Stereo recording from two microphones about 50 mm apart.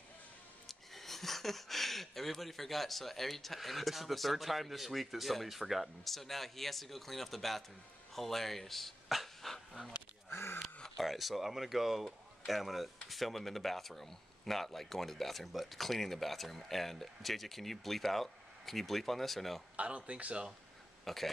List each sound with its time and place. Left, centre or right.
0.7 s speech: centre
8.1 s dog: centre
10.3 s a sound: left
11.0 s speech: centre
19.8 s speech: right
21.0 s speech: centre